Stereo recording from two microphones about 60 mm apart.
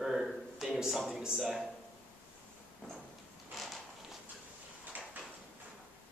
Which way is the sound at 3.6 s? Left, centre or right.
Centre.